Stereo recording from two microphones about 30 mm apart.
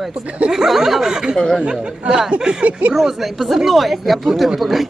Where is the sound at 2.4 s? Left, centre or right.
Right.